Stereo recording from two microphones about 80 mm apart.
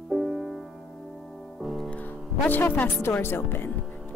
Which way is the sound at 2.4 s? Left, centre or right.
Left.